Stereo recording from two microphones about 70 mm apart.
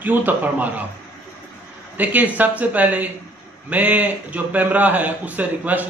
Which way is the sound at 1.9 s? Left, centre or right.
Right.